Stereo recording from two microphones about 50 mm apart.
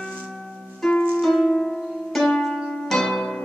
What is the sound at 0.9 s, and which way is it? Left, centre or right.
Music, centre.